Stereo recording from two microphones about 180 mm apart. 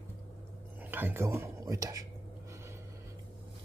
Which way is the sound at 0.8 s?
10° right (ahead or behind).